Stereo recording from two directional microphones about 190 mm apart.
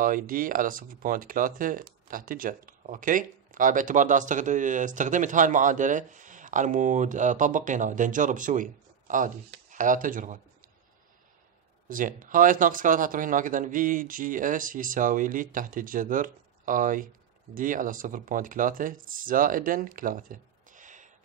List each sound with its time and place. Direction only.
0.0 s speech: 45° right (ahead or behind)
11.9 s speech: 45° right (ahead or behind)